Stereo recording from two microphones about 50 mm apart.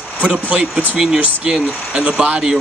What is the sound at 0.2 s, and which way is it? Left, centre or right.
Speech, right.